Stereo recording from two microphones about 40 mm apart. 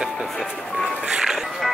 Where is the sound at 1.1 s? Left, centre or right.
Centre.